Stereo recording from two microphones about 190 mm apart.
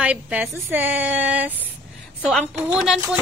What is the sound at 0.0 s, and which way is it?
A woman's voice, 5° right (ahead or behind).